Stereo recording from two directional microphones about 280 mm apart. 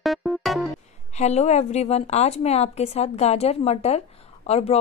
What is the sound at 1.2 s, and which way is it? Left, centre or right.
A woman's voice, left.